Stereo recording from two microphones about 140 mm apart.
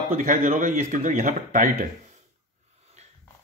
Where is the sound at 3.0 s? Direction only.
55° right (ahead or behind).